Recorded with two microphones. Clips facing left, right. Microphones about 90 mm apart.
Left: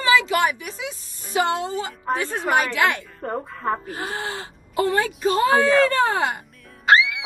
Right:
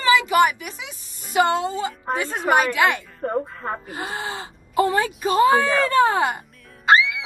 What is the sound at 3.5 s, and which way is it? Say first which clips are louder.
Speech: left 4 dB; centre (ahead or behind).